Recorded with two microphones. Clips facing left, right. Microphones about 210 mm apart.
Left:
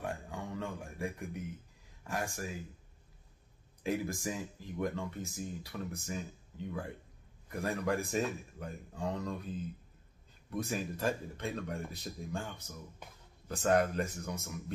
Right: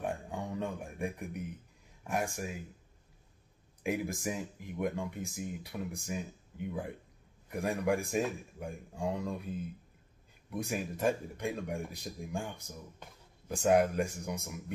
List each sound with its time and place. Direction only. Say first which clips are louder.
0.0 s a sound: right 3 dB; 20° right (ahead or behind)
2.0 s speech: right 3 dB; 15° right (ahead or behind)
3.8 s speech: right 1 dB; 15° right (ahead or behind)
10.6 s speech: right 2 dB; 15° right (ahead or behind)